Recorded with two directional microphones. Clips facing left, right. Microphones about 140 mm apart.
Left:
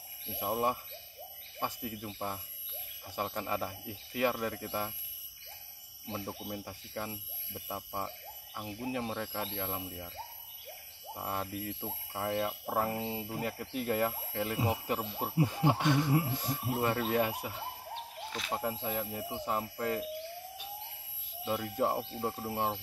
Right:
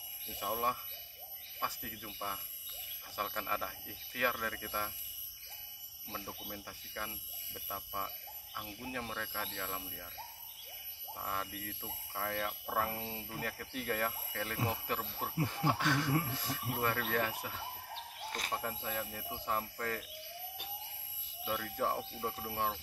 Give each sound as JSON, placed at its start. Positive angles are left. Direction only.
{"t": 0.4, "sound": "speech", "side_deg": 15}
{"t": 6.2, "sound": "speech", "side_deg": 20}
{"t": 11.1, "sound": "speech", "side_deg": 20}
{"t": 21.5, "sound": "speech", "side_deg": 20}